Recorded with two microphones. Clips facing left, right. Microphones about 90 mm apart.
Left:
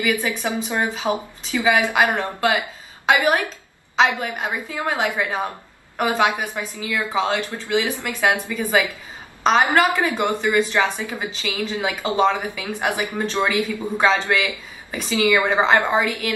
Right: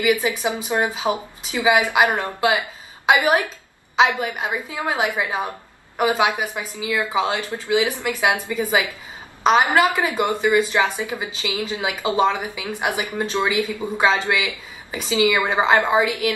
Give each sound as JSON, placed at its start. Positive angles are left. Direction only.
{"t": 0.0, "sound": "speech", "side_deg": -15}
{"t": 4.1, "sound": "a woman's voice", "side_deg": -15}